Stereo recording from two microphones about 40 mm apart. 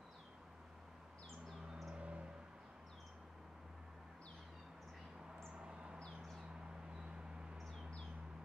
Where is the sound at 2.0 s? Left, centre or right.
Right.